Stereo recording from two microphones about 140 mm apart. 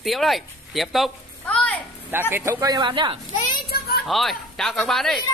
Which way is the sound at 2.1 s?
15° right (ahead or behind).